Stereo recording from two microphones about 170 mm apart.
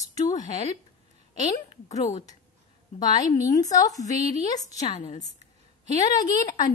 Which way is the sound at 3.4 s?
20° left (ahead or behind).